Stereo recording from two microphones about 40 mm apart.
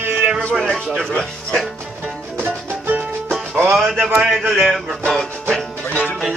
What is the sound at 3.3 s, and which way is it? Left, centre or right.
Music, right.